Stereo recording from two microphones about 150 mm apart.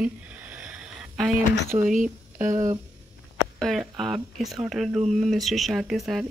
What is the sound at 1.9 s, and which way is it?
Speech, 60° right (ahead or behind).